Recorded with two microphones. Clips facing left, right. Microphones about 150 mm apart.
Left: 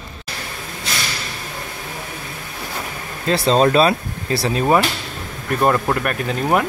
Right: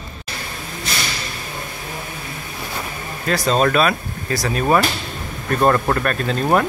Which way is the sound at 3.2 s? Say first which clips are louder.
Left 2 dB; 25° left (ahead or behind).